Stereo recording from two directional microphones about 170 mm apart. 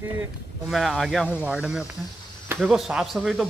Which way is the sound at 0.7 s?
Centre (ahead or behind).